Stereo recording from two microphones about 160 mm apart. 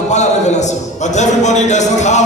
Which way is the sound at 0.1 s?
45° left (ahead or behind).